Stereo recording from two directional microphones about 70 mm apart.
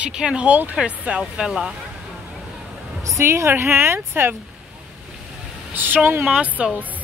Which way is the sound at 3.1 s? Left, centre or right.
Right.